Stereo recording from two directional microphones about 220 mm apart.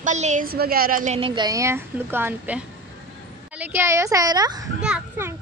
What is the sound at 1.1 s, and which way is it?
Speech, 20° right (ahead or behind).